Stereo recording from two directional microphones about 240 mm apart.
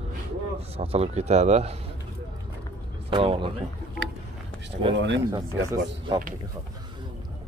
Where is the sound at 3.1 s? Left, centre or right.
Right.